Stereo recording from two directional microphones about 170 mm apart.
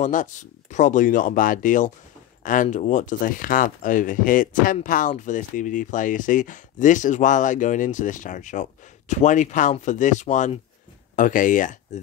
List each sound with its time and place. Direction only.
0.0 s speech: 50° left (ahead or behind)